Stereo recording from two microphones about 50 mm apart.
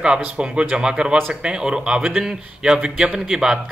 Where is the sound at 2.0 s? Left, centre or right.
Centre.